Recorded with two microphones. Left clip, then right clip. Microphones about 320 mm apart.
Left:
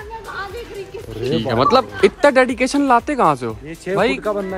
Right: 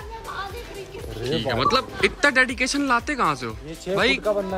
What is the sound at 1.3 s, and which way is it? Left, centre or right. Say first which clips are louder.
Speech: left 6 dB; centre.